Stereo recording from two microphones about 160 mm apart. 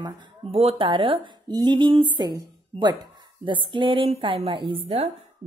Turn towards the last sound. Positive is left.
turn(degrees=-35)  # may be behind; listen again after turning